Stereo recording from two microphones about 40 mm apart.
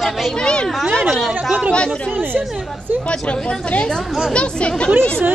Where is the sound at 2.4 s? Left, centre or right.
Right.